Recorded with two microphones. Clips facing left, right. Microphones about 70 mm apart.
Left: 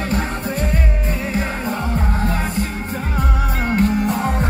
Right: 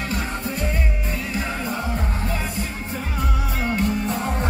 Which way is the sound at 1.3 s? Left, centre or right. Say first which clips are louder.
Left 3 dB; left.